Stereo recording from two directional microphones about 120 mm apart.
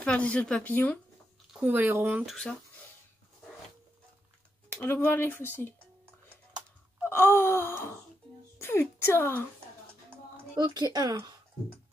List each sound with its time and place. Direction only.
0.0 s speech: 10° left (ahead or behind)
1.5 s speech: 15° right (ahead or behind)
2.2 s speech: 5° left (ahead or behind)
4.8 s speech: 20° left (ahead or behind)
7.0 s wail: 20° left (ahead or behind)
8.5 s speech: 20° left (ahead or behind)
10.5 s speech: 35° right (ahead or behind)